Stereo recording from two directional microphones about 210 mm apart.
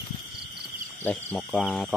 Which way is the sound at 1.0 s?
10° left (ahead or behind).